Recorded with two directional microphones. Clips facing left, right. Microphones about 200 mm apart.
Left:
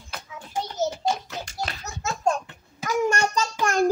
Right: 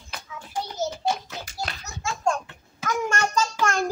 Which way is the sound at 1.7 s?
5° left (ahead or behind).